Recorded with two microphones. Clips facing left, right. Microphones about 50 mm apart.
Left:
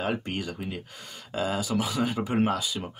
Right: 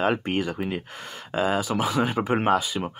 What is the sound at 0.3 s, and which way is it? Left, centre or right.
Speech, right.